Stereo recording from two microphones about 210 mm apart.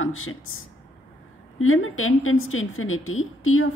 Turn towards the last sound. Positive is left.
turn(degrees=75)  # may be behind; listen again after turning